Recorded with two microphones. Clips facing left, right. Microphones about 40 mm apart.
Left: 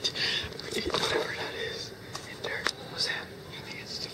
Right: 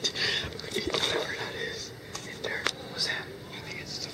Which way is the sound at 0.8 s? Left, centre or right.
Centre.